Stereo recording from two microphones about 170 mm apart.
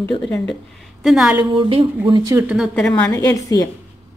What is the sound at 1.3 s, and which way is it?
A woman's voice, 30° right (ahead or behind).